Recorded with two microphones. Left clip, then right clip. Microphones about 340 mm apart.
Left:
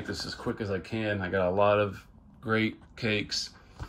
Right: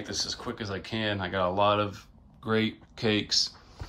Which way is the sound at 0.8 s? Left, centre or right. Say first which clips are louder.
Right 1 dB; right.